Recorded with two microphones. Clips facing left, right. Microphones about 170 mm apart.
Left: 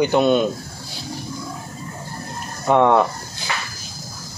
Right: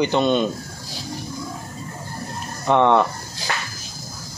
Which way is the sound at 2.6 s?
5° left (ahead or behind).